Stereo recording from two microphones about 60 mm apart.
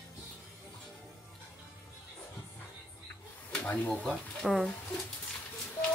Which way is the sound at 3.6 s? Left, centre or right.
Left.